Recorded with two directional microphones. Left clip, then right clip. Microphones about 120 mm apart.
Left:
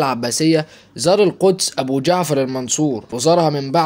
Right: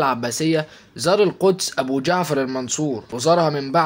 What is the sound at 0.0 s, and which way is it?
Speech, 35° left (ahead or behind).